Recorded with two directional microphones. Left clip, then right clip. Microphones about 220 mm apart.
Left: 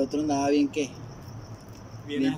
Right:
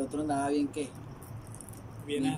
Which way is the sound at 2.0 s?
15° right (ahead or behind).